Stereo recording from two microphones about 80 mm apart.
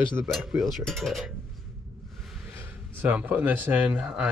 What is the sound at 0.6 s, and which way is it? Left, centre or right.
Speech, centre.